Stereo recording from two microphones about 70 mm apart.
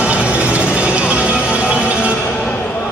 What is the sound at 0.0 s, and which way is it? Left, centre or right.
Music, centre.